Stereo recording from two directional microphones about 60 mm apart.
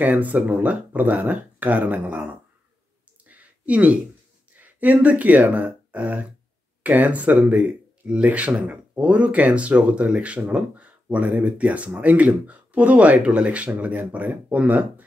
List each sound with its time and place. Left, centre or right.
0.0 s speech: right
3.3 s a sound: right
4.6 s speech: right